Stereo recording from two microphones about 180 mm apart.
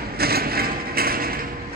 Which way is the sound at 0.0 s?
60° right (ahead or behind).